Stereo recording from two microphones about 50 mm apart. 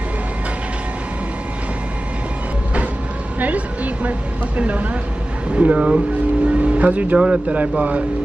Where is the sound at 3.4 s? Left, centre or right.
Right.